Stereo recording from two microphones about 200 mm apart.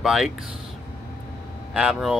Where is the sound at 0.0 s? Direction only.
Centre (ahead or behind).